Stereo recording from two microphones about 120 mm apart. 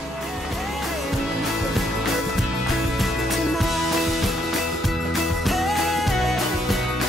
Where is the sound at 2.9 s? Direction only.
Centre (ahead or behind).